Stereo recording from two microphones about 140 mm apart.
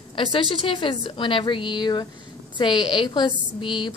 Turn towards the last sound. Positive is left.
turn(degrees=35)  # may be behind; listen again after turning